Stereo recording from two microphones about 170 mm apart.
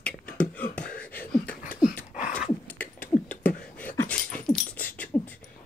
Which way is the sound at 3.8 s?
10° left (ahead or behind).